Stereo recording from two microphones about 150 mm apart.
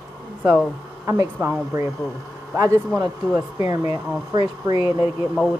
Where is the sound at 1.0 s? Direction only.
20° right (ahead or behind).